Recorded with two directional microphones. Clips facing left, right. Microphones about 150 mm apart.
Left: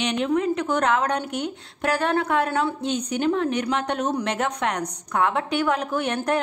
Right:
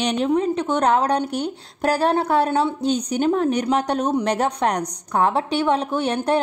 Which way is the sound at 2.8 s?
35° right (ahead or behind).